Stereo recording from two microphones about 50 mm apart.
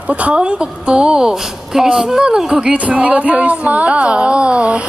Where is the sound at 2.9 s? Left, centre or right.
Right.